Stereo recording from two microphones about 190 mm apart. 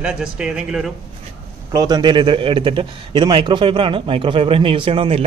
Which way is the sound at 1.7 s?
20° right (ahead or behind).